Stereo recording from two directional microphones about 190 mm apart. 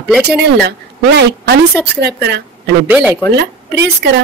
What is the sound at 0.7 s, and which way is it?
A woman's voice, 60° right (ahead or behind).